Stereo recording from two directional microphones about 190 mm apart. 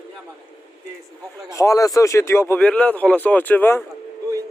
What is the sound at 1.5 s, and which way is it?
Speech, 15° left (ahead or behind).